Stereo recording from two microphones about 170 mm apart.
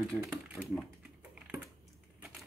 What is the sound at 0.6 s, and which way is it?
Speech, 20° left (ahead or behind).